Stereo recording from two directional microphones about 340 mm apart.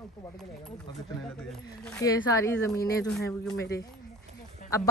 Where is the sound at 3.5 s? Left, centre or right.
Left.